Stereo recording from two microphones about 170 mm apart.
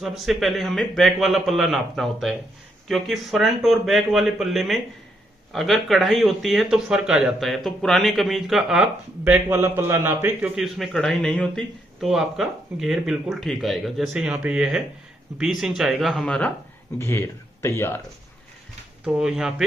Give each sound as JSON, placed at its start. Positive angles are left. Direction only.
{"t": 0.0, "sound": "a man's voice", "side_deg": 0}
{"t": 9.2, "sound": "a man's voice", "side_deg": -10}
{"t": 17.0, "sound": "speech", "side_deg": 15}
{"t": 19.0, "sound": "a man's voice", "side_deg": -5}